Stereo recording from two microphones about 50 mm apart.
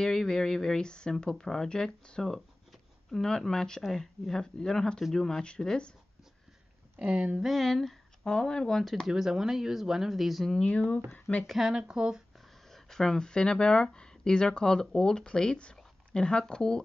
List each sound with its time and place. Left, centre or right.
0.0 s speech: centre
7.0 s speech: right
7.4 s a sound: centre
8.2 s speech: centre
9.1 s speech: centre
10.5 s speech: left
11.4 s speech: centre
12.7 s speech: centre